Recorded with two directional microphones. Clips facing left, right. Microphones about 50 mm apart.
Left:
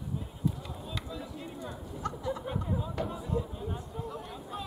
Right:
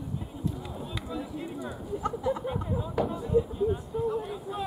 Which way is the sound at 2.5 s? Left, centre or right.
Centre.